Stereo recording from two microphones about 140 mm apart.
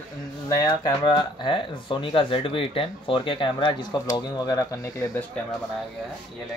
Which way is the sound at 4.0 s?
25° left (ahead or behind).